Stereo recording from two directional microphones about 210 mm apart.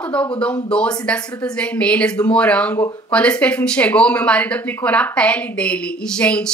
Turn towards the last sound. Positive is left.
turn(degrees=5)  # may be behind; listen again after turning